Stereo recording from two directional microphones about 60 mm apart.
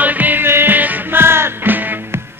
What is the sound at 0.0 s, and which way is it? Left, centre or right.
Music, right.